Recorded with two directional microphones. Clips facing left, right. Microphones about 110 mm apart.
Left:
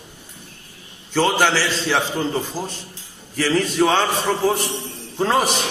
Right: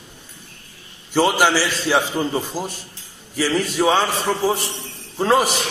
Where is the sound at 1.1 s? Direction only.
15° right (ahead or behind).